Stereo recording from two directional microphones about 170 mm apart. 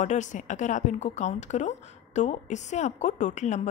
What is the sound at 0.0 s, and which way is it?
A woman's voice, 45° left (ahead or behind).